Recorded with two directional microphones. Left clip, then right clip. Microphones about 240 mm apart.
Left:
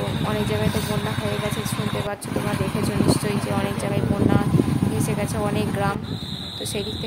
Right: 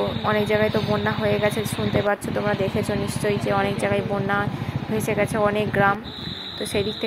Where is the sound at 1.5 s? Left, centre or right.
Centre.